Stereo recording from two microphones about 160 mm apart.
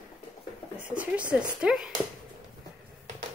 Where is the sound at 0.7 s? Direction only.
10° right (ahead or behind).